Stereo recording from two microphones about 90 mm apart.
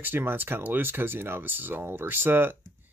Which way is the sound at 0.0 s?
25° right (ahead or behind).